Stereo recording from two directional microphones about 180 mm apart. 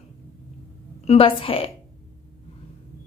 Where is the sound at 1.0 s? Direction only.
30° left (ahead or behind).